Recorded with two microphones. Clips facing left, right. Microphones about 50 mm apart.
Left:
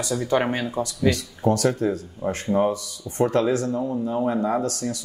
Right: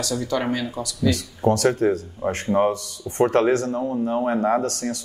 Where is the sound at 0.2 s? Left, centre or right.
Left.